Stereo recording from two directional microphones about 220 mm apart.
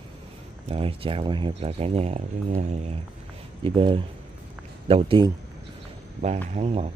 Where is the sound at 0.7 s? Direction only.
25° right (ahead or behind).